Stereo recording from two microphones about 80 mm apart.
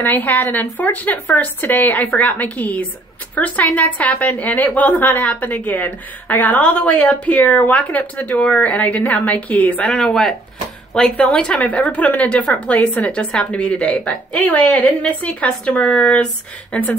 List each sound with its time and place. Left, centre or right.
0.0 s a woman's voice: left
9.8 s a woman's voice: centre